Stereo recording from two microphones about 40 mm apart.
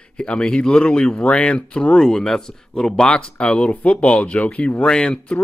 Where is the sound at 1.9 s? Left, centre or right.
Centre; by 4.8 s left.